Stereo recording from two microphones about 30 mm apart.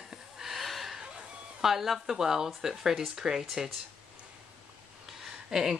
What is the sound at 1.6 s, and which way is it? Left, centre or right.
Speech, centre.